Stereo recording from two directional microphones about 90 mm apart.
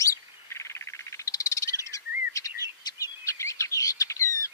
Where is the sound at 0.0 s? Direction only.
35° left (ahead or behind).